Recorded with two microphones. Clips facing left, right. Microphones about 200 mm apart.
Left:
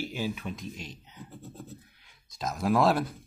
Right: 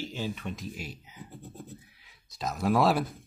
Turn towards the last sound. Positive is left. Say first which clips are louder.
# even
turn(degrees=0)  # may be behind; listen again after turning